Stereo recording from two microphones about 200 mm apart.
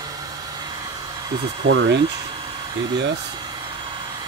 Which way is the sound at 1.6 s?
60° right (ahead or behind).